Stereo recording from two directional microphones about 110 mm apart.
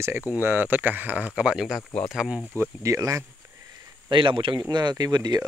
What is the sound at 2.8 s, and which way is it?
Speech, 30° right (ahead or behind).